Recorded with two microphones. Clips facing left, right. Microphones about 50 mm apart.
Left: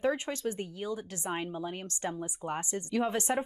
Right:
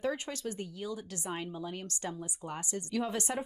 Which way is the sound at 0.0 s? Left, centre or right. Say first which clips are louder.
Left 4 dB; left.